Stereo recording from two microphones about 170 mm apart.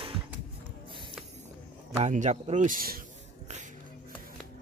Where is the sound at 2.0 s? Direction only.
45° right (ahead or behind).